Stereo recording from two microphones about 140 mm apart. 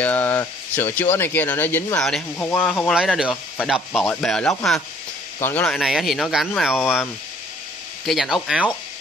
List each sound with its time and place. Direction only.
0.0 s speech: 15° left (ahead or behind)
2.0 s speech: 5° left (ahead or behind)
2.9 s speech: 5° right (ahead or behind); by 5.7 s 15° left (ahead or behind)
5.7 s speech: centre (ahead or behind)
6.7 s speech: 15° left (ahead or behind)
8.0 s speech: centre (ahead or behind)